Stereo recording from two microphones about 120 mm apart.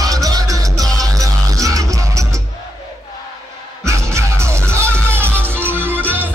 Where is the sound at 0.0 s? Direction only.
30° right (ahead or behind).